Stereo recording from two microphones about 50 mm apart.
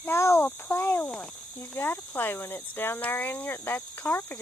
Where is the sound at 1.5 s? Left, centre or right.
Left.